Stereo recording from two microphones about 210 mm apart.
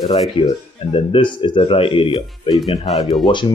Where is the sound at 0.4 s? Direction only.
25° left (ahead or behind).